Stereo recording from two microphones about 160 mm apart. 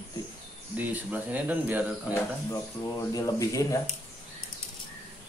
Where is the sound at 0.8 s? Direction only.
10° right (ahead or behind).